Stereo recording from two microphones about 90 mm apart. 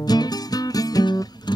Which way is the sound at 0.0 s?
45° left (ahead or behind).